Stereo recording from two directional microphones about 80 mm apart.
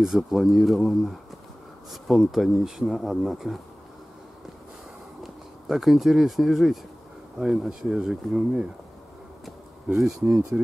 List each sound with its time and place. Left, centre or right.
0.0 s speech: centre
5.2 s speech: centre
9.8 s speech: centre
10.5 s speech: centre